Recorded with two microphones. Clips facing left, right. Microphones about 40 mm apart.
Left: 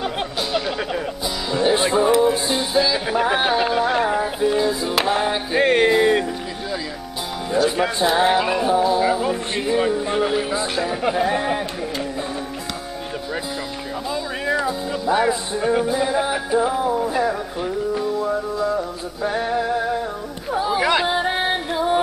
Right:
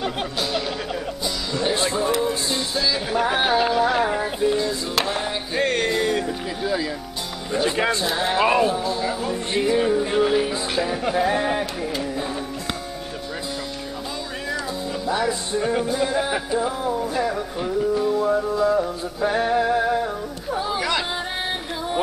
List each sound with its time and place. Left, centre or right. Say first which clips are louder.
0.0 s music: left 1 dB; centre
4.6 s music: left 3 dB; centre
7.5 s music: left 2 dB; centre
8.1 s music: left 6 dB; centre
8.4 s music: right 2 dB; centre
8.6 s speech: left 6 dB; centre
9.6 s music: right 2 dB; centre
11.2 s music: even; centre
15.0 s music: left 5 dB; centre
15.5 s music: left 3 dB; centre
20.5 s chatter: left 4 dB; centre
20.8 s music: left 6 dB; centre